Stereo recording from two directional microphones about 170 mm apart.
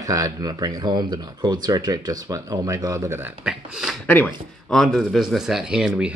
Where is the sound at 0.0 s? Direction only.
20° right (ahead or behind).